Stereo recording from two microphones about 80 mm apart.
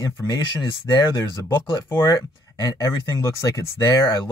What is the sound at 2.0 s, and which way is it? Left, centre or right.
Speech, left.